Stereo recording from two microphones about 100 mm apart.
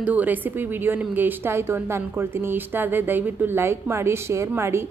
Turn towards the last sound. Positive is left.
turn(degrees=-25)  # may be behind; listen again after turning